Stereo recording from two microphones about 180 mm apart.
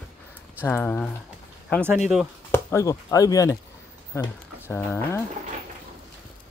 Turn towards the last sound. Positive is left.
turn(degrees=15)  # may be behind; listen again after turning